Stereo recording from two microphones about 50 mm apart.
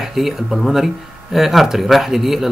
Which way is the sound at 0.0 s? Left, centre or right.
Centre.